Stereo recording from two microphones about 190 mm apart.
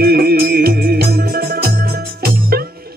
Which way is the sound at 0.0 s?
55° right (ahead or behind).